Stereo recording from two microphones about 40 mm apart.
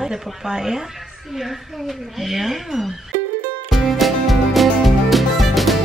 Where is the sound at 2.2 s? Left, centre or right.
Centre.